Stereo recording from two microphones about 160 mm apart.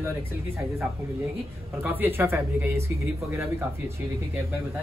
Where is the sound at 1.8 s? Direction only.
10° right (ahead or behind).